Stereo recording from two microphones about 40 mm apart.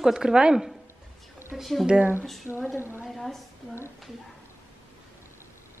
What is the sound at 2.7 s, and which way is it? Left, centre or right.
Speech, right.